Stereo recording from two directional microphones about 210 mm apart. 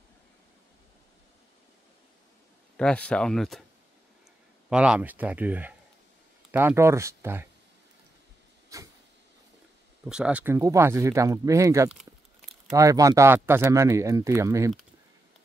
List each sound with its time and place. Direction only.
2.8 s speech: 5° left (ahead or behind)
4.6 s speech: 5° right (ahead or behind)
8.7 s vehicle: 15° right (ahead or behind)
10.0 s speech: 5° right (ahead or behind)